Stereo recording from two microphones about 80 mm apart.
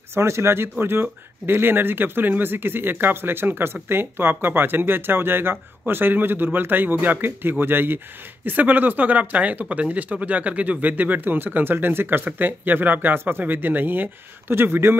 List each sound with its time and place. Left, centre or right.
0.1 s speech: right